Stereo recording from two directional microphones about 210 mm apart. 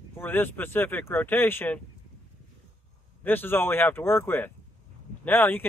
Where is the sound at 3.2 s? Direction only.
10° left (ahead or behind).